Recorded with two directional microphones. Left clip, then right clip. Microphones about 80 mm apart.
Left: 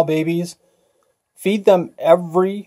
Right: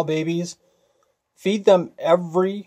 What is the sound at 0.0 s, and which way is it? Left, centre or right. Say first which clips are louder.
Speech: left 5 dB; left.